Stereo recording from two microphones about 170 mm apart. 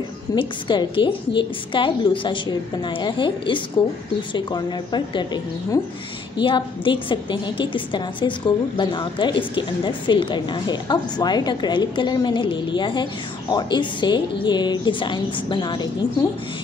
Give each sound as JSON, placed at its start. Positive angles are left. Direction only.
{"t": 0.4, "sound": "a woman's voice", "side_deg": 30}